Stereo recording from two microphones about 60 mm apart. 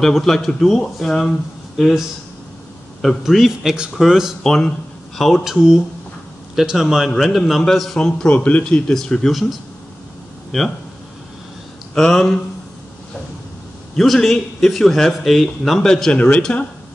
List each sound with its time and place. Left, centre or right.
0.0 s a man's voice: centre
3.3 s a man's voice: centre
4.4 s a man's voice: centre
8.9 s a man's voice: centre
11.9 s speech: centre
13.9 s a man's voice: centre
15.9 s speech: centre